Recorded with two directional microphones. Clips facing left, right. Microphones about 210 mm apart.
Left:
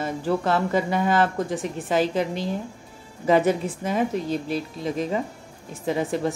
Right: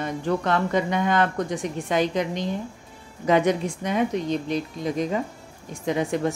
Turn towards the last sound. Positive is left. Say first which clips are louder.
# even
turn(degrees=0)  # may be behind; listen again after turning